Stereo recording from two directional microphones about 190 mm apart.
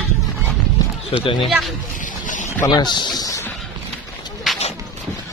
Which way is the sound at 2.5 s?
20° left (ahead or behind).